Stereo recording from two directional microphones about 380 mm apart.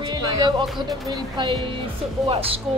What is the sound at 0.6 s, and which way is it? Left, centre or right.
Speech, centre.